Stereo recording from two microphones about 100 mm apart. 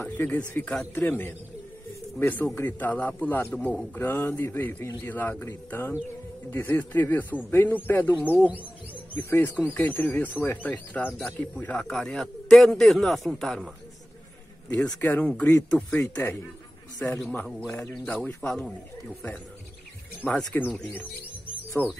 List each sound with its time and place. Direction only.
0.0 s a man's voice: 20° left (ahead or behind); by 13.7 s centre (ahead or behind)
15.0 s a man's voice: 15° left (ahead or behind)
17.5 s a man's voice: centre (ahead or behind)
20.2 s speech: 20° left (ahead or behind)
21.8 s a man's voice: 20° left (ahead or behind)